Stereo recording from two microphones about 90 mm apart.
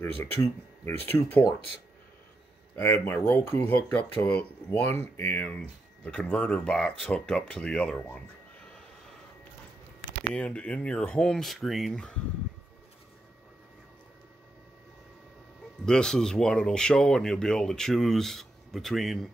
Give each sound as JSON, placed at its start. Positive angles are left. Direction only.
{"t": 0.2, "sound": "speech", "side_deg": 25}
{"t": 2.8, "sound": "speech", "side_deg": 25}
{"t": 6.0, "sound": "speech", "side_deg": 10}
{"t": 10.3, "sound": "speech", "side_deg": 10}
{"t": 15.8, "sound": "speech", "side_deg": 10}